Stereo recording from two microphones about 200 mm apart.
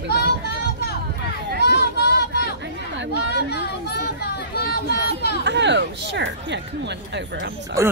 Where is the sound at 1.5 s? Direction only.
55° left (ahead or behind).